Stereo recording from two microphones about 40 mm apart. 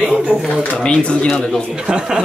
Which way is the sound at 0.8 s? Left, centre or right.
Left.